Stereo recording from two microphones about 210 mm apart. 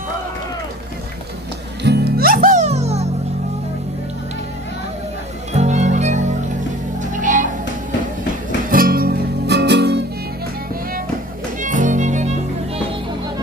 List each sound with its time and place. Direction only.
1.8 s music: 50° right (ahead or behind); by 3.1 s 30° right (ahead or behind)
5.5 s music: 35° right (ahead or behind)
8.6 s music: 40° right (ahead or behind)
11.6 s music: 35° right (ahead or behind)